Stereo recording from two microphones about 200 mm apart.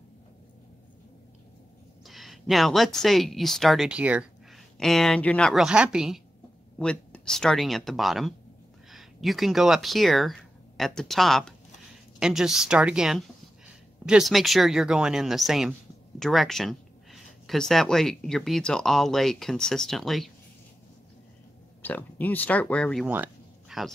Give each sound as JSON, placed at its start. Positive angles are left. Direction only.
{"t": 2.0, "sound": "speech", "side_deg": 0}
{"t": 21.8, "sound": "speech", "side_deg": 10}
{"t": 23.0, "sound": "a sound", "side_deg": -10}